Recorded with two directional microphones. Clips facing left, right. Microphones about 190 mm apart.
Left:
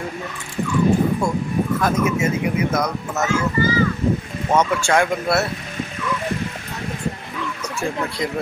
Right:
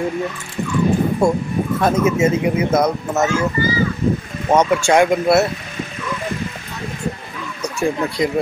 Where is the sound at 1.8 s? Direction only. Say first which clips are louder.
Right 7 dB; 25° right (ahead or behind).